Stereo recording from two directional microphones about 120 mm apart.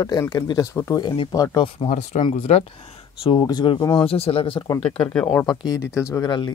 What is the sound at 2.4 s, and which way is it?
Speech, 60° left (ahead or behind).